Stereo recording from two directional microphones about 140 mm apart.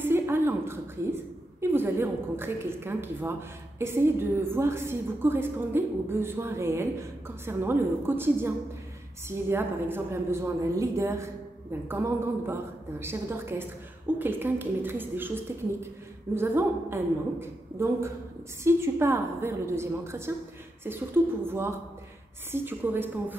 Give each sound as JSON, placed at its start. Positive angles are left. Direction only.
{"t": 0.0, "sound": "a woman's voice", "side_deg": -15}